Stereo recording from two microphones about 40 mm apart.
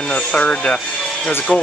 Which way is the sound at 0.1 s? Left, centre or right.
Left.